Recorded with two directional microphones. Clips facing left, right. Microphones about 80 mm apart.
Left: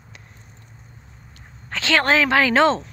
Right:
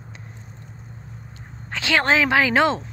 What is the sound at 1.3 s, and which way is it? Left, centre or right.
Speech, centre.